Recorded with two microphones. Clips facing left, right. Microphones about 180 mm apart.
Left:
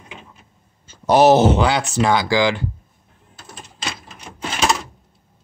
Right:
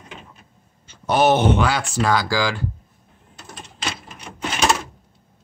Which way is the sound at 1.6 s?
20° left (ahead or behind).